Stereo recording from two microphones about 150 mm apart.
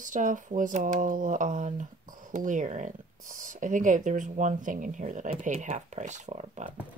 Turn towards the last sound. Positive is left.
turn(degrees=-50)  # may be behind; listen again after turning